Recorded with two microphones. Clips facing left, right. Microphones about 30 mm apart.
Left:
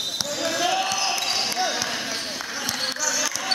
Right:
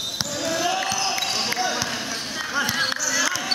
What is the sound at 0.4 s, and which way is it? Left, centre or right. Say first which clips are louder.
Basketball bounce: even; centre.